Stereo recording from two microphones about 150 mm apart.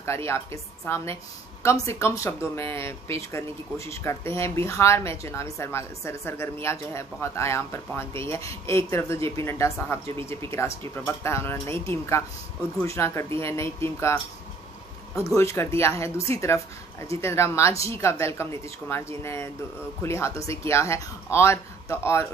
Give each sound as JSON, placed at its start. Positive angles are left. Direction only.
{"t": 0.0, "sound": "speech", "side_deg": 20}
{"t": 15.1, "sound": "speech", "side_deg": 20}